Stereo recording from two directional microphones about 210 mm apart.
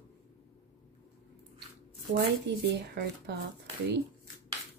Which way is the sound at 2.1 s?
50° right (ahead or behind).